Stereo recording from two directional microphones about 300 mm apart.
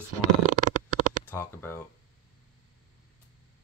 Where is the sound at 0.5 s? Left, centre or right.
Right.